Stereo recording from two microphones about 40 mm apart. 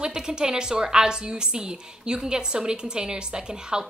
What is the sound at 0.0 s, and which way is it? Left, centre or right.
A woman's voice, centre.